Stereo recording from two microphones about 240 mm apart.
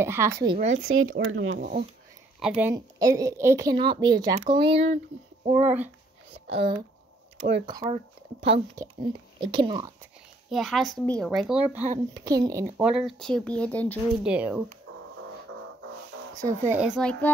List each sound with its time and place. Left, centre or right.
0.0 s a woman's voice: centre
0.6 s speech: right
0.8 s speech: right
2.4 s a woman's voice: centre; by 5.0 s right
5.6 s a woman's voice: centre
6.5 s speech: right
10.5 s speech: centre
14.3 s speech: centre
16.3 s speech: centre